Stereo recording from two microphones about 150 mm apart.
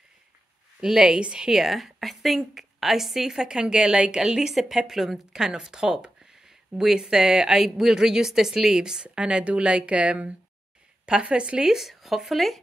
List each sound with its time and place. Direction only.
0.7 s a woman's voice: 5° right (ahead or behind)